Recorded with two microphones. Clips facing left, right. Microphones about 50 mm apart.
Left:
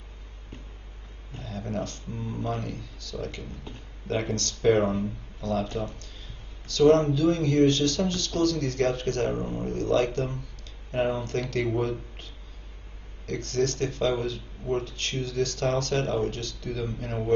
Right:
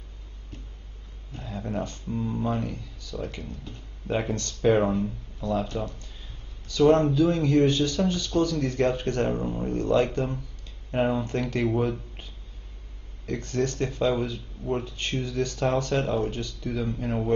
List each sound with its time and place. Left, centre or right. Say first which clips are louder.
1.4 s speech: right 1 dB; centre
4.6 s speech: right 1 dB; centre
6.7 s speech: even; centre